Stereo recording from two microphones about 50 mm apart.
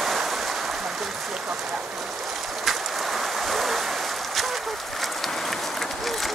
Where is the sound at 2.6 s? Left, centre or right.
Centre.